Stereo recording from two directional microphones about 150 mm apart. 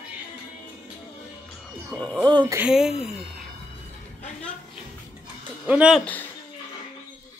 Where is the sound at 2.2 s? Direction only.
30° right (ahead or behind).